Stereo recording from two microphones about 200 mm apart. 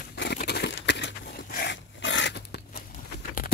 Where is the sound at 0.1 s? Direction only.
55° left (ahead or behind).